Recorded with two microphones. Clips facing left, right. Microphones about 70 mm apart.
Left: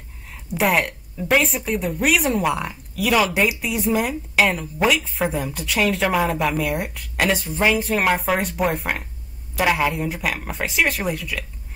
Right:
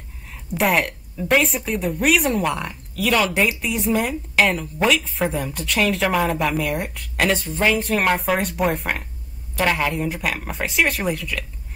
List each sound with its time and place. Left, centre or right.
0.5 s a woman's voice: centre